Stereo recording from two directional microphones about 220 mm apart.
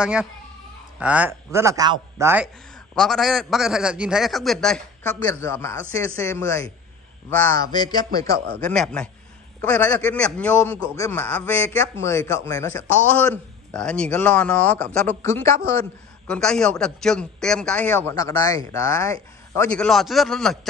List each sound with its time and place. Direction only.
0.0 s a man's voice: 5° right (ahead or behind); by 8.1 s 20° left (ahead or behind)
8.5 s a man's voice: 5° left (ahead or behind)